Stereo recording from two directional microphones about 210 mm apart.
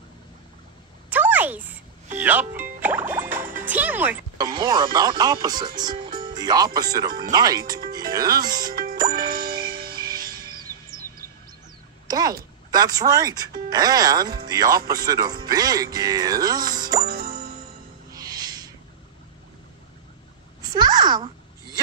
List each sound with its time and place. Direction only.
1.1 s a sound: 10° right (ahead or behind)
2.1 s speech: 10° right (ahead or behind)
2.8 s music: 10° right (ahead or behind)
3.6 s speech: 10° right (ahead or behind)
4.6 s speech: 20° right (ahead or behind)
8.5 s music: 40° right (ahead or behind)
12.1 s a sound: 20° right (ahead or behind)
12.7 s speech: 20° right (ahead or behind)
17.0 s music: 45° right (ahead or behind)
18.1 s music: 20° right (ahead or behind)
20.7 s a sound: 20° right (ahead or behind)